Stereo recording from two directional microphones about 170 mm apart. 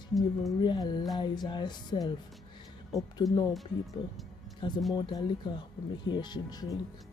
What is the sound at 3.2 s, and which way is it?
Speech, 20° left (ahead or behind).